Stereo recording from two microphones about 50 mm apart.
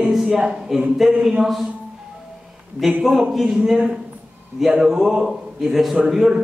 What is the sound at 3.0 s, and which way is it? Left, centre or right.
A man's voice, centre.